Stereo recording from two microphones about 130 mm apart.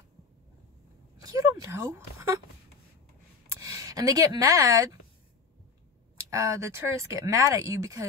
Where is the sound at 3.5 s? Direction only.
25° right (ahead or behind).